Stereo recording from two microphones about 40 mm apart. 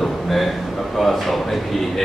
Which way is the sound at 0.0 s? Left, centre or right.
Centre.